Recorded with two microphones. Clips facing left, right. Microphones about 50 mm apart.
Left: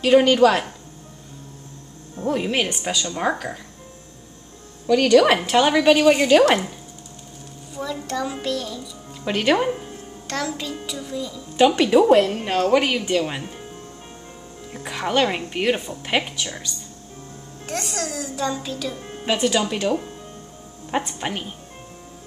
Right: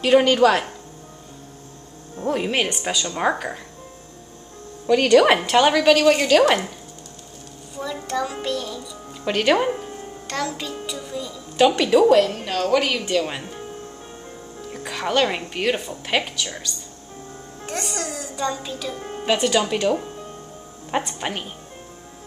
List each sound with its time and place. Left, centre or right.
0.0 s a child's voice: centre
2.3 s a woman's voice: centre
3.2 s a woman's voice: centre
4.8 s a woman's voice: centre
5.5 s a child's voice: centre
5.8 s speech: centre
7.7 s a child's voice: centre
11.5 s a woman's voice: centre
11.9 s a woman's voice: centre
14.7 s a child's voice: centre
21.1 s a child's voice: centre